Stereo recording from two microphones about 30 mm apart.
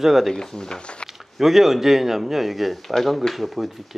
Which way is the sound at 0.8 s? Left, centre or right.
Left.